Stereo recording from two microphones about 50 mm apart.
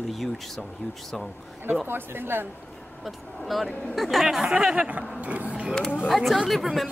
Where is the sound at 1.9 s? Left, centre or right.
Right.